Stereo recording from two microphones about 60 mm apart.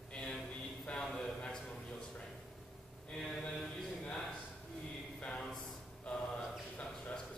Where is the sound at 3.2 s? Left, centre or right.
Centre.